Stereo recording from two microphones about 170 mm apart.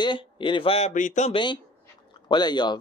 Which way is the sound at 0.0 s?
30° left (ahead or behind).